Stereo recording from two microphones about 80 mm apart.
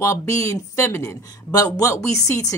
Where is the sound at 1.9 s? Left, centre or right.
Left.